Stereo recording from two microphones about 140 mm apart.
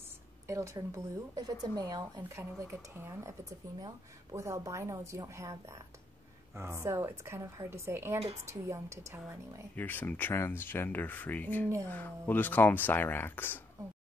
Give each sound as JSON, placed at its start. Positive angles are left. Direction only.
{"t": 0.5, "sound": "a woman's voice", "side_deg": -20}
{"t": 9.8, "sound": "speech", "side_deg": 15}